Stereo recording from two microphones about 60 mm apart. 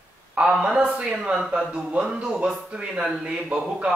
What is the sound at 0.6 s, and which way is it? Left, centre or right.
Speech, right.